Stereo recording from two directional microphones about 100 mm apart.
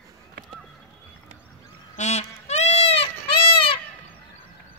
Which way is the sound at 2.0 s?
90° left.